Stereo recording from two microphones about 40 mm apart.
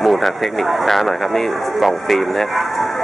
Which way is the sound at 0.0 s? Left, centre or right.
Centre.